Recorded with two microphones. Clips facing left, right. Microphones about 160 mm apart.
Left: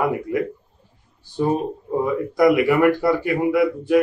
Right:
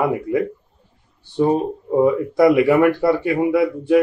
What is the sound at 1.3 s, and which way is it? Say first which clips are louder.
Speech: right 3 dB; 25° right (ahead or behind).